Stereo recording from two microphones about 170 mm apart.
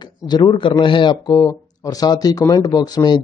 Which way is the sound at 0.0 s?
25° left (ahead or behind).